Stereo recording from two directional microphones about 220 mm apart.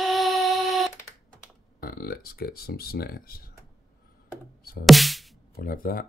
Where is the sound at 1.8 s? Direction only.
40° left (ahead or behind).